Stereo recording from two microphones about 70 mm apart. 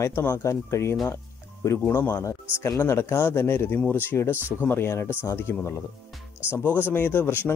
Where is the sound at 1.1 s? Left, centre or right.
Left.